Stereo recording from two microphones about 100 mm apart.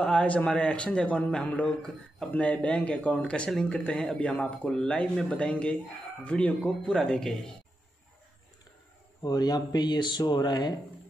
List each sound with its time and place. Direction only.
0.0 s a man's voice: 10° left (ahead or behind)
9.2 s speech: 40° left (ahead or behind)